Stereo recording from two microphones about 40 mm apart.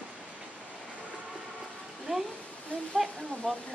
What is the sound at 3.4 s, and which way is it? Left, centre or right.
Speech, centre.